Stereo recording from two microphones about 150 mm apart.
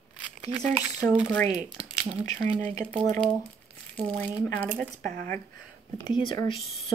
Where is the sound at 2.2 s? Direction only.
55° right (ahead or behind).